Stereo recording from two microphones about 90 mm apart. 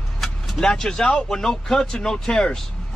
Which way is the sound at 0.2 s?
5° left (ahead or behind).